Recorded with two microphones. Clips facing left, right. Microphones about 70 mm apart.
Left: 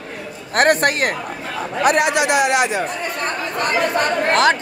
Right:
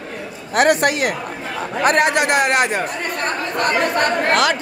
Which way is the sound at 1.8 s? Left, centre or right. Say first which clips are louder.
Even; right.